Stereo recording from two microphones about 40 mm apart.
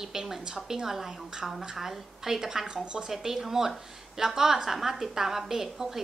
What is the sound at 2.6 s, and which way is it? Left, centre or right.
Speech, right.